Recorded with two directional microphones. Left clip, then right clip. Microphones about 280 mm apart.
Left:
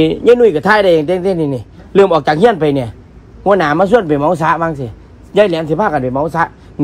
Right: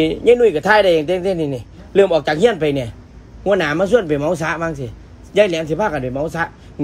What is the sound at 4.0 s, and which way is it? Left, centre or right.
A man's voice, centre.